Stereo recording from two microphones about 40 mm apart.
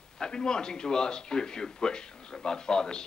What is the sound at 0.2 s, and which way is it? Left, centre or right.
A man's voice, centre.